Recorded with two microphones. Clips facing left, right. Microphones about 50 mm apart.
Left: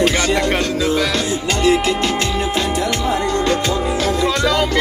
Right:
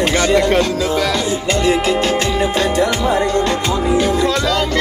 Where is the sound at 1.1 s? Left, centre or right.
Centre.